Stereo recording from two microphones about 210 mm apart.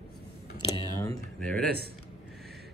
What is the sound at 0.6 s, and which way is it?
Typing, 20° left (ahead or behind).